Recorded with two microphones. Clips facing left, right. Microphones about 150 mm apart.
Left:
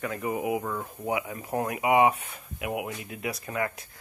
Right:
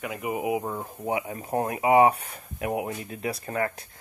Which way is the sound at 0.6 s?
30° right (ahead or behind).